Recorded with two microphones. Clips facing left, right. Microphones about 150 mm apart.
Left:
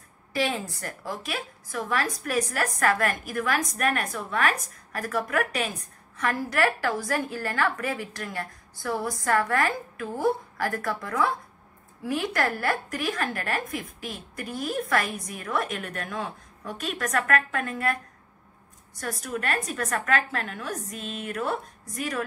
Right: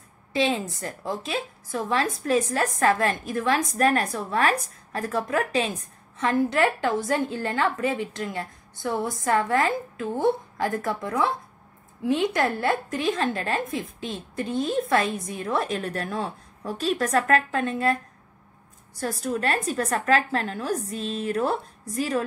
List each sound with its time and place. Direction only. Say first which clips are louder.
0.3 s a woman's voice: right 3 dB; 20° right (ahead or behind)
18.9 s a woman's voice: right 5 dB; 30° right (ahead or behind)